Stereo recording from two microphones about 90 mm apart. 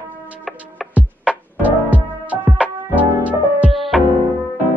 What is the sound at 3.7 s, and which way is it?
Music, centre (ahead or behind).